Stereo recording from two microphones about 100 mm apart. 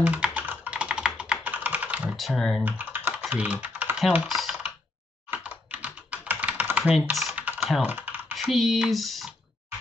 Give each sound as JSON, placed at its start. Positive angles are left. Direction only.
{"t": 0.0, "sound": "computer keyboard", "side_deg": -10}
{"t": 2.0, "sound": "speech", "side_deg": 5}
{"t": 2.6, "sound": "typing", "side_deg": -20}
{"t": 4.3, "sound": "typing", "side_deg": 0}
{"t": 5.3, "sound": "computer keyboard", "side_deg": -15}
{"t": 7.1, "sound": "speech", "side_deg": 0}
{"t": 7.3, "sound": "typing", "side_deg": -15}
{"t": 7.8, "sound": "speech", "side_deg": -15}
{"t": 8.4, "sound": "speech", "side_deg": 0}